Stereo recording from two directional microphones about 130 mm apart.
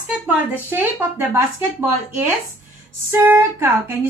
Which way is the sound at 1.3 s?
20° right (ahead or behind).